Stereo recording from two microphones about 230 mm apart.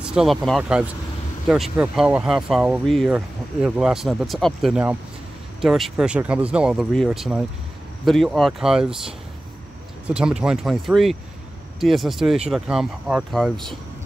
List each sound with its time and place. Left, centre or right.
0.0 s speech: centre